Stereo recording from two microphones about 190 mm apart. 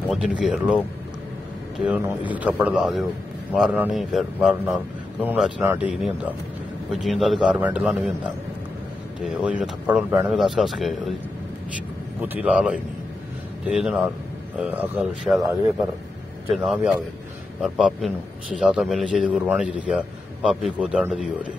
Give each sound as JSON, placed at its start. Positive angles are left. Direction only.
{"t": 0.1, "sound": "speech", "side_deg": -5}
{"t": 1.9, "sound": "speech", "side_deg": -10}
{"t": 9.2, "sound": "speech", "side_deg": -5}
{"t": 12.2, "sound": "speech", "side_deg": -10}
{"t": 16.5, "sound": "speech", "side_deg": 0}